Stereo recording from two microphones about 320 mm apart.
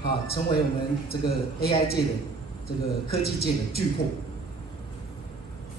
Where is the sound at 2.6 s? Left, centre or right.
Left.